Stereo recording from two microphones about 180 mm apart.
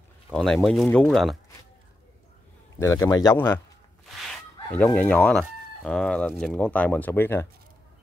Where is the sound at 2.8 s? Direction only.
15° left (ahead or behind).